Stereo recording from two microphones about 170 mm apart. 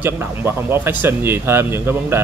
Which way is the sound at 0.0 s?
10° right (ahead or behind).